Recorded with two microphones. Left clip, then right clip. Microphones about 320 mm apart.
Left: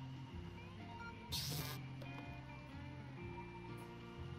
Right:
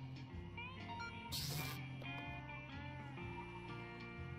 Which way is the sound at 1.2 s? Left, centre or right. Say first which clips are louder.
Left 3 dB; centre.